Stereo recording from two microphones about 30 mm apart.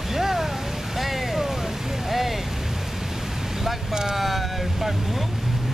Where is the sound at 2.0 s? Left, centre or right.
Centre.